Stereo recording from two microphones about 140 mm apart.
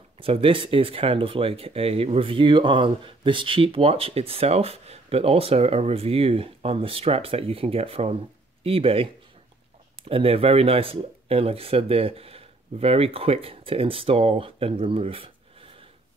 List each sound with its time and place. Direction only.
0.2 s speech: 40° right (ahead or behind)